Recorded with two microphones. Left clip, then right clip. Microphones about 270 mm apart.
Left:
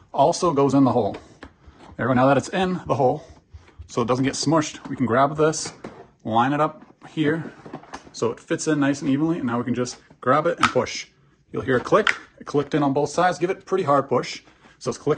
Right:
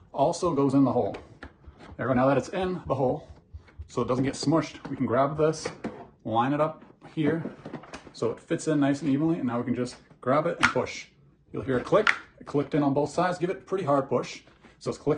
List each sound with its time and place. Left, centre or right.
0.1 s speech: left
8.2 s speech: left